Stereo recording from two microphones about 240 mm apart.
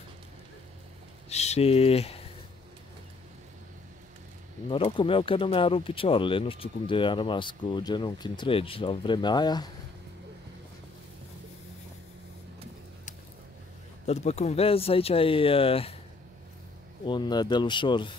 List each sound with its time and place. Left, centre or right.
1.3 s speech: left
4.6 s speech: left
14.0 s speech: left
17.0 s speech: centre